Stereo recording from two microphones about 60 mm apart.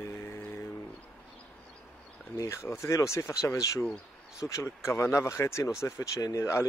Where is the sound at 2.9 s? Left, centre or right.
Left.